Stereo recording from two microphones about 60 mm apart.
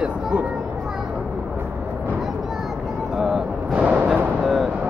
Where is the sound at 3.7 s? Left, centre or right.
Right.